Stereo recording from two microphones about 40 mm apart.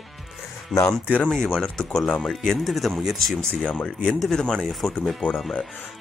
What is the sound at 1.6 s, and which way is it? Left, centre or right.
Speech, centre.